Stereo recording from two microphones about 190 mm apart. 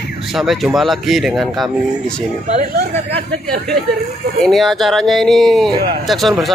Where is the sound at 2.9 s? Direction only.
30° right (ahead or behind).